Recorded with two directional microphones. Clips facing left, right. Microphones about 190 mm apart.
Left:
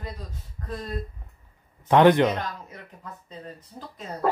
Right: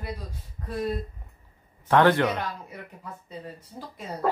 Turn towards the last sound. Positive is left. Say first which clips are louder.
# right 1 dB
turn(degrees=-10)  # may be behind; listen again after turning